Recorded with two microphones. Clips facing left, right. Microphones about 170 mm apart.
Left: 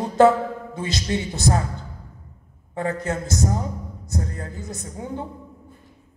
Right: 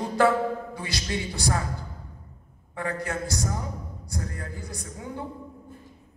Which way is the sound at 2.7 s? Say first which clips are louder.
Left 5 dB; 20° left (ahead or behind).